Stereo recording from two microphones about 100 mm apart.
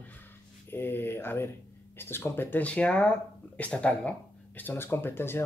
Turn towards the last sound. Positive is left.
turn(degrees=20)  # may be behind; listen again after turning